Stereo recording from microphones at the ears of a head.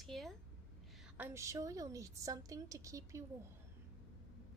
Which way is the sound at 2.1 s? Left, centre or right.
Right.